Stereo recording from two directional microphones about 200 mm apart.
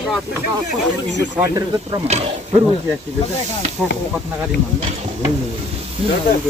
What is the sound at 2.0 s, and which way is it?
Speech, 35° right (ahead or behind).